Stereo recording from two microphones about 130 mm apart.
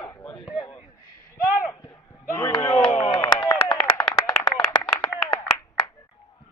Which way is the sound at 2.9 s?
60° left (ahead or behind).